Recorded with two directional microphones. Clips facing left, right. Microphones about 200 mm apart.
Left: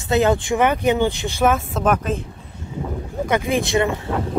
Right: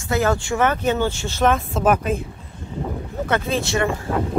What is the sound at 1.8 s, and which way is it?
Speech, 10° right (ahead or behind).